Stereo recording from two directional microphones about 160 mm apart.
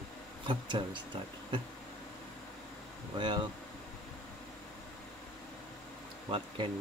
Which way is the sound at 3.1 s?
30° right (ahead or behind).